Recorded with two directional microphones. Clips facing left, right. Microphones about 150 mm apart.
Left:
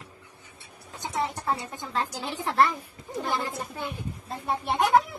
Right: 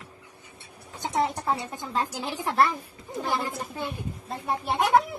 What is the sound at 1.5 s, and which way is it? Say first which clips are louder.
Speech: right 1 dB; 10° right (ahead or behind).